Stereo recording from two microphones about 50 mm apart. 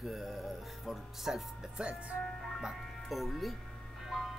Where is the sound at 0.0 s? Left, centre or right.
Centre.